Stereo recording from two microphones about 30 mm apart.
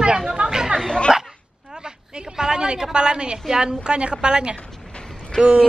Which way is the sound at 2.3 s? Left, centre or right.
Right.